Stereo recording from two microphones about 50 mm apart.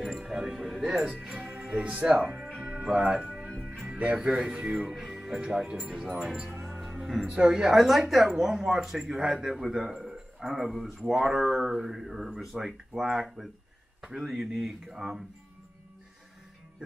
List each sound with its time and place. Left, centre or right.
0.2 s speech: centre
3.3 s music: centre
4.2 s speech: centre
7.2 s a man's voice: centre